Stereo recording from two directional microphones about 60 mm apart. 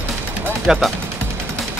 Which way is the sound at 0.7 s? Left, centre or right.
Centre.